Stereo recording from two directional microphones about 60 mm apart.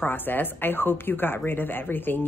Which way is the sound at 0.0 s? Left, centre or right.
Left.